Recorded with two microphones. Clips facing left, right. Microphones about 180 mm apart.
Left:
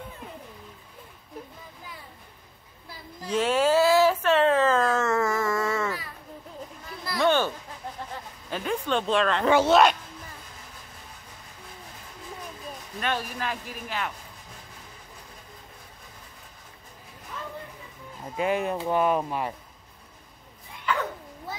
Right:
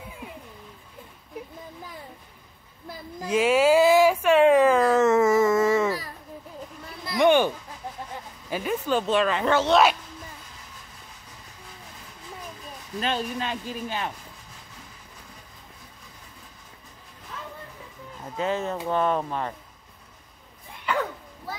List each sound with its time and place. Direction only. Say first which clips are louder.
3.3 s a sound: right 3 dB; 10° right (ahead or behind)
7.1 s a sound: right 4 dB; 15° right (ahead or behind)
8.5 s speech: right 2 dB; 5° right (ahead or behind)
9.5 s speech: left 3 dB; 10° left (ahead or behind)
13.0 s speech: right 2 dB; 25° right (ahead or behind)
18.3 s speech: left 1 dB; 15° left (ahead or behind)